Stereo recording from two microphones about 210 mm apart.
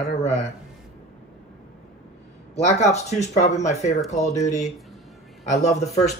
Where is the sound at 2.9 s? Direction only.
30° left (ahead or behind).